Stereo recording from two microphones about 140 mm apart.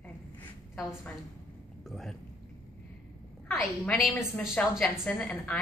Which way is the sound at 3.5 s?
Centre (ahead or behind).